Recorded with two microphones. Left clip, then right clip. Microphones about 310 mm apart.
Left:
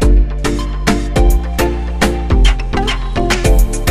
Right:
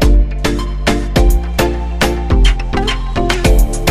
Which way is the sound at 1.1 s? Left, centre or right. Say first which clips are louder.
Right 1 dB; centre.